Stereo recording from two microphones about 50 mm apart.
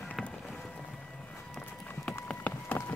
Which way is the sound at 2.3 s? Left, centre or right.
Left.